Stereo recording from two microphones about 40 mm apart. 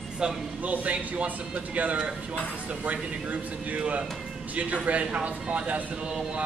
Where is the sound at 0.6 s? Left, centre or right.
Right.